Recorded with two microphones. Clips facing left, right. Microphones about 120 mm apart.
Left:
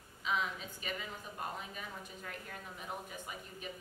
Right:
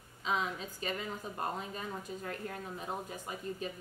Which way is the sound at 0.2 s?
35° right (ahead or behind).